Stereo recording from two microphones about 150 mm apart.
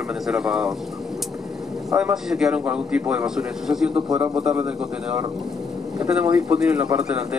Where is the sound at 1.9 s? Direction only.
5° right (ahead or behind).